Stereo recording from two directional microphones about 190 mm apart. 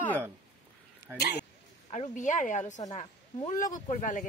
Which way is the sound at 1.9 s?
40° left (ahead or behind).